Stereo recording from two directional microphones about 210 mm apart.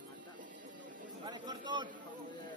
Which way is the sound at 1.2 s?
20° right (ahead or behind).